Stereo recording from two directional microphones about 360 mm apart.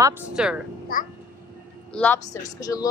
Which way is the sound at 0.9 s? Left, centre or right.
Left.